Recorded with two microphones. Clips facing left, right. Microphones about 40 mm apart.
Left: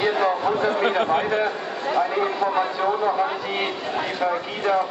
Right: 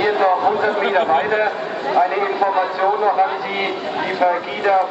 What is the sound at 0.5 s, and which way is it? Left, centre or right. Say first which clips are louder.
A man's voice: right 4 dB; right.